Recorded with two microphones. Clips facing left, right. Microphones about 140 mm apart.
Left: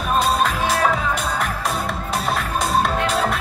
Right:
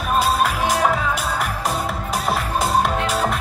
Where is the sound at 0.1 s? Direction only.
5° right (ahead or behind).